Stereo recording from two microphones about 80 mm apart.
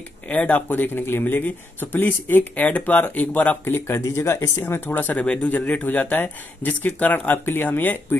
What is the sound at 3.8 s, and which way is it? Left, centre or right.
Speech, left.